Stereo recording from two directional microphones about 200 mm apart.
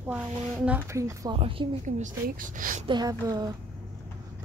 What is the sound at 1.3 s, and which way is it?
Speech, 25° right (ahead or behind).